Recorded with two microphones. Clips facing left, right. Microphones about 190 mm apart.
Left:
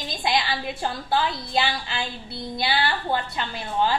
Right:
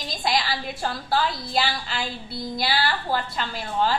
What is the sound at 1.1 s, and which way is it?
A woman's voice, 20° left (ahead or behind).